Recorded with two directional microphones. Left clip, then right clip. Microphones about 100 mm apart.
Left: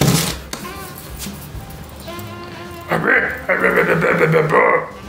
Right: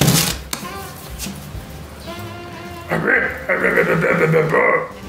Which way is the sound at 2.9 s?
40° left (ahead or behind).